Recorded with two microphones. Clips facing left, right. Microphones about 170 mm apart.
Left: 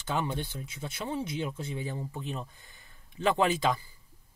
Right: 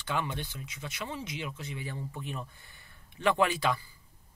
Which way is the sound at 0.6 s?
30° left (ahead or behind).